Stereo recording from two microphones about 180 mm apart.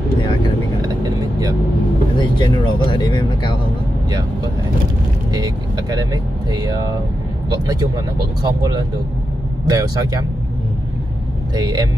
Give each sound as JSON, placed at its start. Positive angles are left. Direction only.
{"t": 0.8, "sound": "vehicle", "side_deg": -20}
{"t": 2.1, "sound": "speech", "side_deg": 25}
{"t": 5.3, "sound": "speech", "side_deg": -20}
{"t": 11.5, "sound": "speech", "side_deg": -20}